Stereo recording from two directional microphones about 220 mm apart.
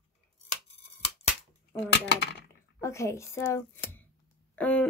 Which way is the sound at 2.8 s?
15° left (ahead or behind).